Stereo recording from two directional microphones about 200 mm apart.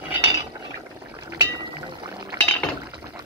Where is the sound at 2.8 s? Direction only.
20° right (ahead or behind).